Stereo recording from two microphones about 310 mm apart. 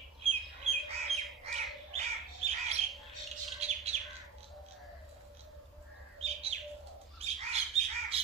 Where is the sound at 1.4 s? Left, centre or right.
Right.